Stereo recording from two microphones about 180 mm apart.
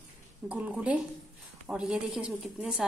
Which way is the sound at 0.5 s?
5° right (ahead or behind).